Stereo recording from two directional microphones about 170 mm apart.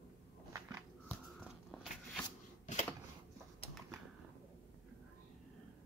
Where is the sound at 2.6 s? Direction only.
40° left (ahead or behind).